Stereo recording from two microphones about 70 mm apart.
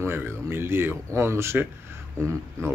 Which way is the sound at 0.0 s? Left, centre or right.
Right.